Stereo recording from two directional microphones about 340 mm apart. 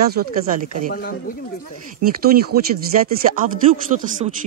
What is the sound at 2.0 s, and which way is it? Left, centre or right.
Speech, right.